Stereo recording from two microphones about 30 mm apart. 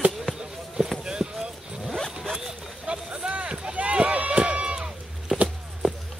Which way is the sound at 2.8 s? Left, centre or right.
Right.